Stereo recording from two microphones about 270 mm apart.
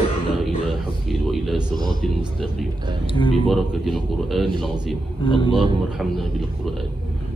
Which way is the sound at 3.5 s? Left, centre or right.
Centre.